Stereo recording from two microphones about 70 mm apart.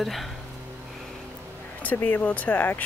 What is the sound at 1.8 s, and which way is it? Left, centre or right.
Speech, left.